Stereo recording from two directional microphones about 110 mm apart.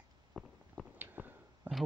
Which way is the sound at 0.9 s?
15° right (ahead or behind).